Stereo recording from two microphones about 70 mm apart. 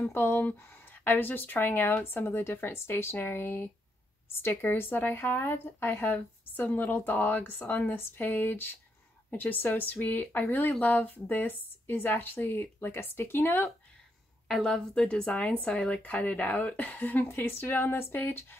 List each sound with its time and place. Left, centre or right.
0.0 s speech: left
14.5 s a woman's voice: centre; by 18.6 s left